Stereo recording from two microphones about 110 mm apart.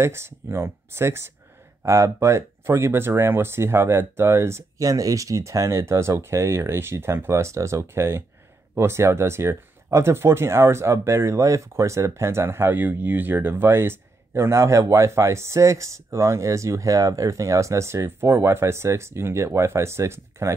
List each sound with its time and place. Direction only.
0.0 s speech: 25° right (ahead or behind)